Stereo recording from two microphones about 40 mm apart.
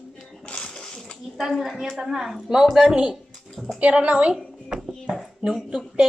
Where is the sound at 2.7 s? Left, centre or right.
Right.